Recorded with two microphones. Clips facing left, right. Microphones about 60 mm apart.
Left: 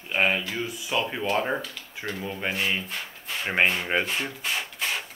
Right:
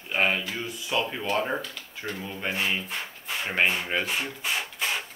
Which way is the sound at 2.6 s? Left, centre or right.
Centre.